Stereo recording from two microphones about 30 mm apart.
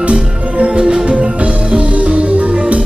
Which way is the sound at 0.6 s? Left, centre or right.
Right.